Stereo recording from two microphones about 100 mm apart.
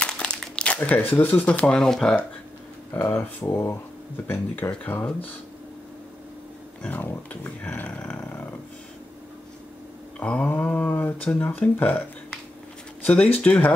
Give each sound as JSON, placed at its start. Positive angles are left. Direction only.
{"t": 0.0, "sound": "crumpling", "side_deg": 10}
{"t": 0.7, "sound": "speech", "side_deg": 20}
{"t": 2.9, "sound": "speech", "side_deg": 30}
{"t": 6.8, "sound": "speech", "side_deg": 20}
{"t": 10.2, "sound": "speech", "side_deg": 10}